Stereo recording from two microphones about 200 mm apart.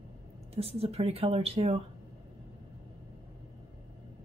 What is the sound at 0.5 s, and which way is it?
Speech, 30° right (ahead or behind).